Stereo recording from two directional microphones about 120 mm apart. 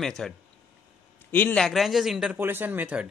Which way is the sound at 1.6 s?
Centre (ahead or behind).